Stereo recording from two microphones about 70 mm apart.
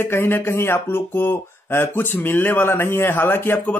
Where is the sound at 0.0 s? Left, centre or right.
Left.